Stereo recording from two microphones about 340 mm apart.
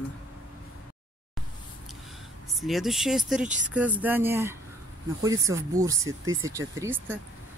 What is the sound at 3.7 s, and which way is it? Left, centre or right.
Speech, centre.